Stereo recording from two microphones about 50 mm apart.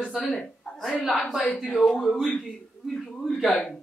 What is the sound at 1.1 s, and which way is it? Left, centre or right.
Speech, centre.